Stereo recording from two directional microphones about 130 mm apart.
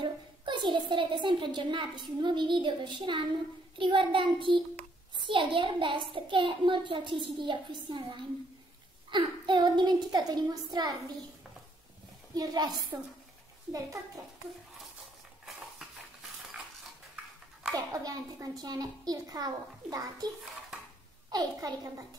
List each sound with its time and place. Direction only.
0.0 s a woman's voice: 35° right (ahead or behind)
12.4 s a woman's voice: 30° right (ahead or behind)
17.9 s a child's voice: 25° right (ahead or behind)
21.3 s a child's voice: 30° right (ahead or behind)